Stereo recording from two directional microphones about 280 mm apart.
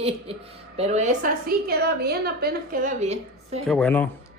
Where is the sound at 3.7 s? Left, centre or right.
Centre.